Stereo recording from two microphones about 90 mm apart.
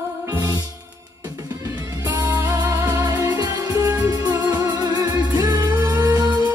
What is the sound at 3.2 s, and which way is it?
Music, 45° right (ahead or behind).